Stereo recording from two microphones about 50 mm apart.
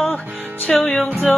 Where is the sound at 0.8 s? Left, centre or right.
Left.